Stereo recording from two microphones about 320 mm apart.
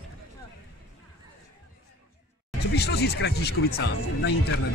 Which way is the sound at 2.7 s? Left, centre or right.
Left.